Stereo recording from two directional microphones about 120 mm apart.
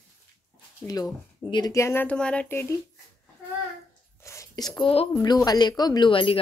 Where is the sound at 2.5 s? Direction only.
20° left (ahead or behind).